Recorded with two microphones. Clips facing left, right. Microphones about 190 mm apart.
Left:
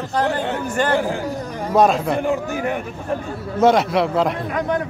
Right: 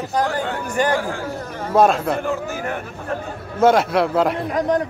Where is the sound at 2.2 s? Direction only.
15° left (ahead or behind).